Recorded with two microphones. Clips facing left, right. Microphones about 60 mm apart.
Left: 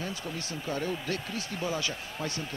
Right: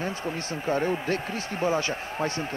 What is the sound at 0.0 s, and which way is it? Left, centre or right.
Speech, right.